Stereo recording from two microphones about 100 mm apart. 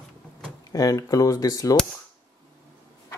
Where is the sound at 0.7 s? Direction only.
35° left (ahead or behind).